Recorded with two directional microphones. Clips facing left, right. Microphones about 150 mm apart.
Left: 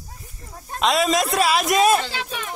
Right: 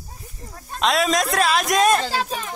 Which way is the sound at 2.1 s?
35° right (ahead or behind).